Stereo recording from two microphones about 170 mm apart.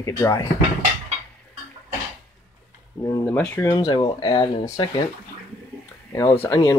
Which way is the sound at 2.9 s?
15° left (ahead or behind).